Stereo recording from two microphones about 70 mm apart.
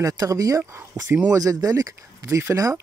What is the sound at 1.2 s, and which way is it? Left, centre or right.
Speech, right.